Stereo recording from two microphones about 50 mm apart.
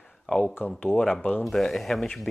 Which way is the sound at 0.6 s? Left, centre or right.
Centre.